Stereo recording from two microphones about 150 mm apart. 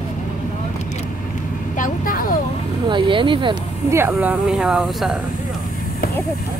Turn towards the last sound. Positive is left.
turn(degrees=-5)  # may be behind; listen again after turning